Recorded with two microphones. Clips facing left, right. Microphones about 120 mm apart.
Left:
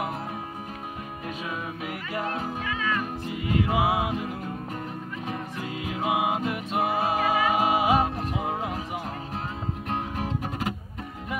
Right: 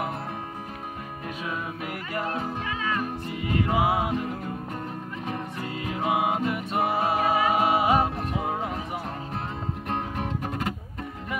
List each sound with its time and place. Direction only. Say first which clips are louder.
3.3 s music: left 1 dB; 5° left (ahead or behind)
6.0 s music: right 1 dB; 10° left (ahead or behind)
7.0 s music: right 1 dB; 30° right (ahead or behind)
7.5 s music: even; 10° left (ahead or behind)
9.8 s music: even; 5° left (ahead or behind)